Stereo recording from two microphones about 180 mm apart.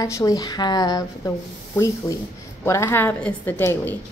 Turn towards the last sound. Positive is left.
turn(degrees=10)  # may be behind; listen again after turning